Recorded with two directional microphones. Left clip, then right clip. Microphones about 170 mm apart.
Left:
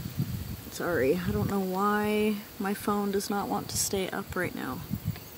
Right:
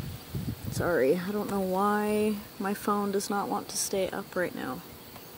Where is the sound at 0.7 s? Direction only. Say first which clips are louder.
Right 2 dB; 15° left (ahead or behind).